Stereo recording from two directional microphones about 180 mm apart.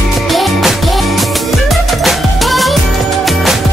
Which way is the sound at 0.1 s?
Centre (ahead or behind).